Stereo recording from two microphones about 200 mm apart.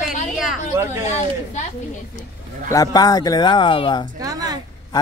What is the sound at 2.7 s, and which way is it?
Speech, 20° left (ahead or behind).